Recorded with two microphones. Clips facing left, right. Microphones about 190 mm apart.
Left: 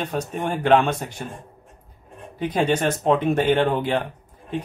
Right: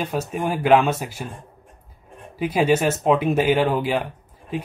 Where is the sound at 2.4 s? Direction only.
10° right (ahead or behind).